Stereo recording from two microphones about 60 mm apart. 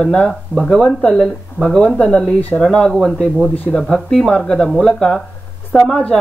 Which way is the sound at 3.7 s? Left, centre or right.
Centre.